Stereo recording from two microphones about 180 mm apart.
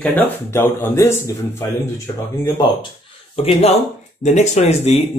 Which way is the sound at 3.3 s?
35° left (ahead or behind).